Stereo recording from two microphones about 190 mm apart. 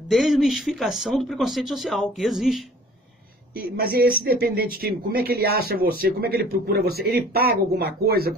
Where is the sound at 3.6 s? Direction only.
50° right (ahead or behind).